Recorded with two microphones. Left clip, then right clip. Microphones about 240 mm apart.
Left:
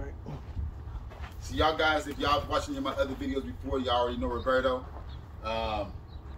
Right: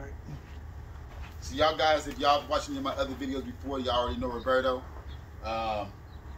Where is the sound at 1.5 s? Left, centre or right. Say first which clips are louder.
Right 1 dB; centre.